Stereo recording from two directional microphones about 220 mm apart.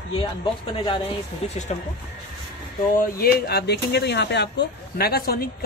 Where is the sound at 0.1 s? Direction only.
20° left (ahead or behind).